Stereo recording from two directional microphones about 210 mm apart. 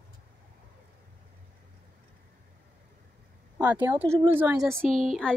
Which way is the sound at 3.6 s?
10° right (ahead or behind).